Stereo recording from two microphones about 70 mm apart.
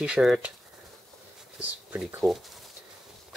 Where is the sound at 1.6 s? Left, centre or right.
Right.